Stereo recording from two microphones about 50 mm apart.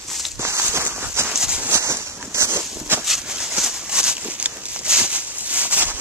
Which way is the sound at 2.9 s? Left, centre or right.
Right.